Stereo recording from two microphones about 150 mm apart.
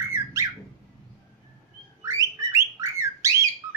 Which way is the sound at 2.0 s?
20° right (ahead or behind).